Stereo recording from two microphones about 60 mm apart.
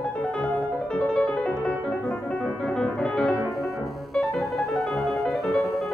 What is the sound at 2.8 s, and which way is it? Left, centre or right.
Music, centre.